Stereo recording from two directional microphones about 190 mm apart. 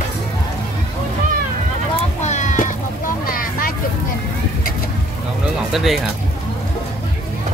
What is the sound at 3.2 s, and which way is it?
Vehicle, 50° left (ahead or behind).